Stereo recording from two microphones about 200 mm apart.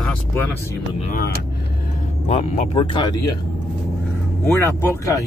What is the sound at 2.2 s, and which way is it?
Speech, 35° left (ahead or behind).